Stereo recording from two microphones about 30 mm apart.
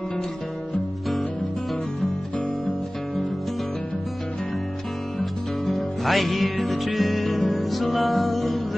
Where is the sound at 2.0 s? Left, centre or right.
Left.